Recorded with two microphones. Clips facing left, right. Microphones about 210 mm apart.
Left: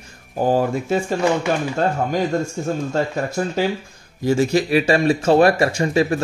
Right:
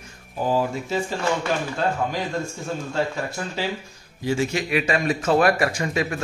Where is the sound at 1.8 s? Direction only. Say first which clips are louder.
Left 3 dB; 45° left (ahead or behind).